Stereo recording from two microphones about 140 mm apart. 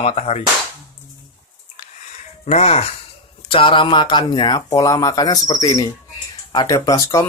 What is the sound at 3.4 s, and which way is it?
Speech, 40° left (ahead or behind).